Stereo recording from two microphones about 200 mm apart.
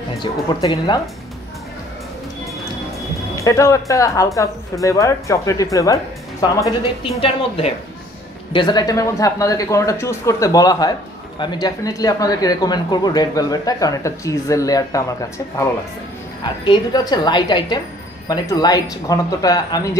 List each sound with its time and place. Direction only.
0.2 s speech: 20° left (ahead or behind)
3.3 s speech: 15° left (ahead or behind)